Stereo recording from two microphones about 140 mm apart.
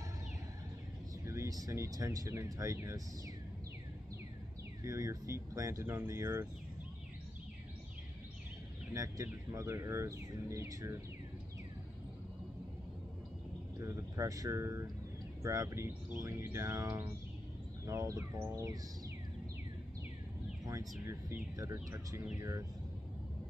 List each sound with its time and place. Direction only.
1.2 s speech: 20° right (ahead or behind)
4.8 s speech: 20° right (ahead or behind)
8.9 s speech: 25° right (ahead or behind)
13.7 s speech: 20° right (ahead or behind)
20.6 s speech: 25° right (ahead or behind)